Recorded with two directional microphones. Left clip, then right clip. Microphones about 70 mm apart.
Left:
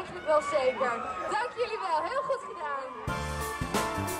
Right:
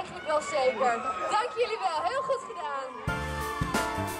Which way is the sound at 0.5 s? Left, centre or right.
Right.